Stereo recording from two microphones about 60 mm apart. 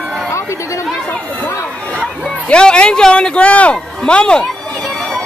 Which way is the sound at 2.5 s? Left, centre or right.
Centre.